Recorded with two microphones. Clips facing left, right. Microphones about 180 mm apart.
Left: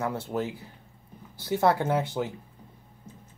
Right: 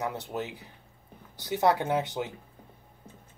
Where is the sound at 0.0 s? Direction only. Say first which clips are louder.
Left 3 dB; 20° right (ahead or behind).